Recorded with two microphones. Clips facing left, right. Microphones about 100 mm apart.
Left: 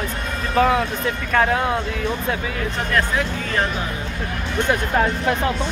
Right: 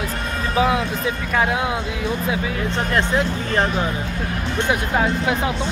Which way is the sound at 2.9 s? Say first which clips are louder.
Right 1 dB; 30° right (ahead or behind).